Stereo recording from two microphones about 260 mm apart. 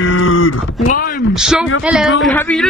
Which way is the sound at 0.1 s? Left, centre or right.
Left.